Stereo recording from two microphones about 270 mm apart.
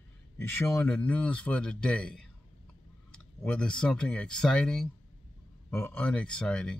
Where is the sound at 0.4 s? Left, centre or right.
Centre.